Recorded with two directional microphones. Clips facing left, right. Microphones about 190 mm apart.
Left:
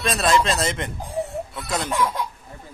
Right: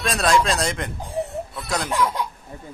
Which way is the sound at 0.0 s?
Centre (ahead or behind).